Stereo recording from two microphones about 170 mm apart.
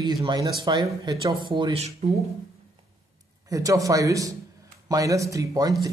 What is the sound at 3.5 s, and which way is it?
Speech, 20° right (ahead or behind).